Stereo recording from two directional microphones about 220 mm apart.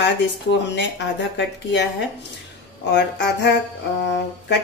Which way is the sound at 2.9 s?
50° left (ahead or behind).